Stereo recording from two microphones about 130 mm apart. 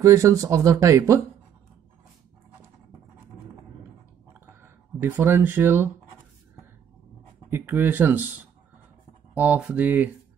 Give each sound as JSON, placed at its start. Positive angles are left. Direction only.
{"t": 0.0, "sound": "speech", "side_deg": -25}
{"t": 4.3, "sound": "a sound", "side_deg": -15}
{"t": 7.4, "sound": "speech", "side_deg": -15}
{"t": 9.3, "sound": "speech", "side_deg": -10}